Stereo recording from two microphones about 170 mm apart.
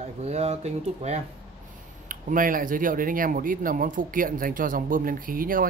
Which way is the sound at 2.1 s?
50° right (ahead or behind).